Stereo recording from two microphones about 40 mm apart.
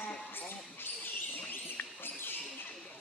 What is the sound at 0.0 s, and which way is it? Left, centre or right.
Basketball bounce, left.